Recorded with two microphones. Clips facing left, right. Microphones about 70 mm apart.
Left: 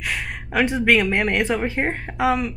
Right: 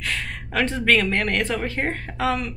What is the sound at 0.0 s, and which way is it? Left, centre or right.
Speech, centre.